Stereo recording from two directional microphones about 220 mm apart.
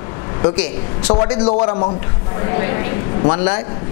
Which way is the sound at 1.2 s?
25° left (ahead or behind).